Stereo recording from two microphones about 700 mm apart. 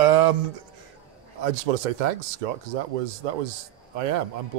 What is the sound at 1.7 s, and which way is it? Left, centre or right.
Speech, right.